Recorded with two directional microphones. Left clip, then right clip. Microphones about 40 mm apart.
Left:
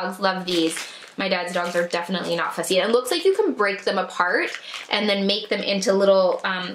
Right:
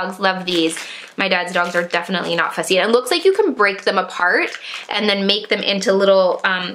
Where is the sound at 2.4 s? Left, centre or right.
Right.